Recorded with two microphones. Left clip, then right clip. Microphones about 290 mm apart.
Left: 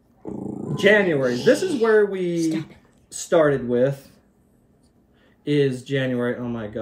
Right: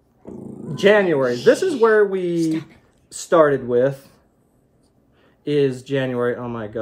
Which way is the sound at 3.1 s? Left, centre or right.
Centre.